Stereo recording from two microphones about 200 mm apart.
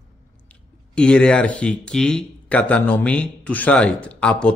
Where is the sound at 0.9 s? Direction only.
5° left (ahead or behind).